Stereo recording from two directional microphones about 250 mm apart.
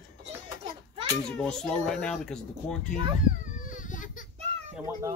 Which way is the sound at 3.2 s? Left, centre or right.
Left.